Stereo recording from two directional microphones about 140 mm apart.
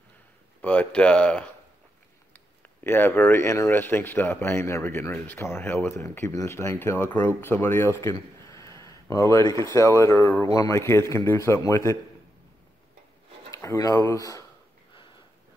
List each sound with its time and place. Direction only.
0.6 s a man's voice: 10° left (ahead or behind)
13.5 s speech: 20° left (ahead or behind)